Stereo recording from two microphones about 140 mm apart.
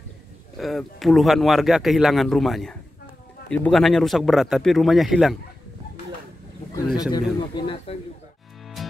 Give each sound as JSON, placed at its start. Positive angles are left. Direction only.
{"t": 0.6, "sound": "speech", "side_deg": 0}
{"t": 7.0, "sound": "speech", "side_deg": 30}
{"t": 7.3, "sound": "speech", "side_deg": 40}
{"t": 8.8, "sound": "music", "side_deg": 0}